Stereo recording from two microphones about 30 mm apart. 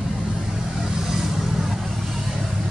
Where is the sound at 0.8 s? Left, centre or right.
Centre.